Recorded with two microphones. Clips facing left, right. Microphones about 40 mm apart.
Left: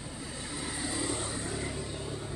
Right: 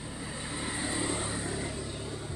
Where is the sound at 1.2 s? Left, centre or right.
Centre.